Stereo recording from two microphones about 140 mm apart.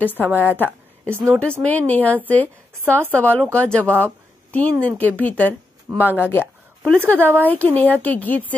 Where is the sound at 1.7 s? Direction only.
10° left (ahead or behind).